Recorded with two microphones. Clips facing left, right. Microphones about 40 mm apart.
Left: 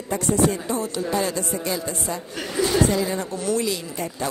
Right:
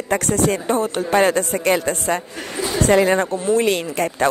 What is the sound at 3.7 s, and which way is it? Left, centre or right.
Speech, right.